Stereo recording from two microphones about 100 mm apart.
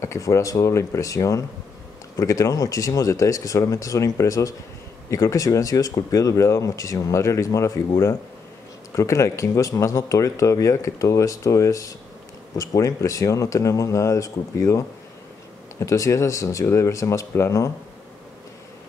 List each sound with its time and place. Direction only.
0.0 s speech: 30° left (ahead or behind)
8.9 s speech: 30° left (ahead or behind)
15.8 s speech: 30° left (ahead or behind)